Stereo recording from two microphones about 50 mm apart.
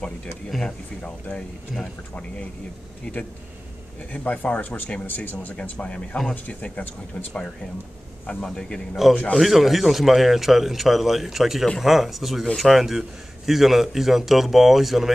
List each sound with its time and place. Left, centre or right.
0.5 s a man's voice: centre
1.0 s speech: left
3.1 s speech: left
8.5 s a man's voice: centre
9.4 s a man's voice: centre